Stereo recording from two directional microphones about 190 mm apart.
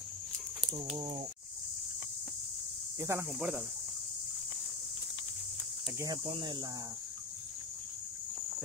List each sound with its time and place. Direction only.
0.9 s speech: 30° right (ahead or behind)
3.0 s speech: 15° right (ahead or behind)
5.9 s speech: 20° right (ahead or behind)